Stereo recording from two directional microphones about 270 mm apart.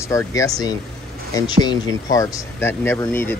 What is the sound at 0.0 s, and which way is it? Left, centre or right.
Speech, centre.